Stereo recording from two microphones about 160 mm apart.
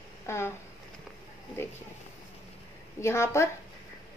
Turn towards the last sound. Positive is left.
turn(degrees=15)  # may be behind; listen again after turning